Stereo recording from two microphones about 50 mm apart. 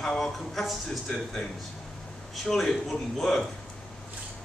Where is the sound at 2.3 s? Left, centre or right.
Centre.